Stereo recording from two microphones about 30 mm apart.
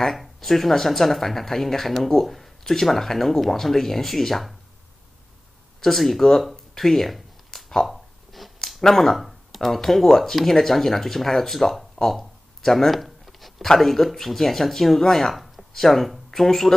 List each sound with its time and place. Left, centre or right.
0.0 s speech: centre
5.8 s speech: centre
6.8 s a sound: centre
8.9 s speech: centre
11.9 s a sound: centre
13.7 s speech: centre